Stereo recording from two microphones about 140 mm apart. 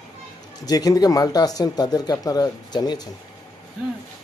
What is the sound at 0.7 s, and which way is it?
A man's voice, 25° left (ahead or behind).